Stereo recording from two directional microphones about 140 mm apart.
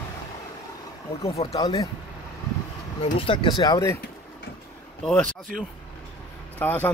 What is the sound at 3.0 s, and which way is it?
Speech, 40° left (ahead or behind).